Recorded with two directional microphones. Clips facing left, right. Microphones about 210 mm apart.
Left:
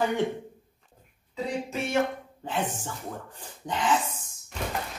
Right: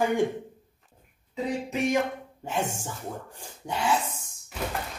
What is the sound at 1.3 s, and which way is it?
Speech, 15° right (ahead or behind).